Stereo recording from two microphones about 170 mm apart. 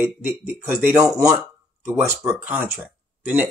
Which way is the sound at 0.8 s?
20° right (ahead or behind).